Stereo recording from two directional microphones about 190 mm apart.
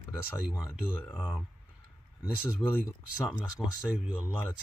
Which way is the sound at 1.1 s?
5° left (ahead or behind).